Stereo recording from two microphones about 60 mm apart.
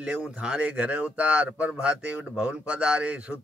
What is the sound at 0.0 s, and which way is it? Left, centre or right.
Speech, centre.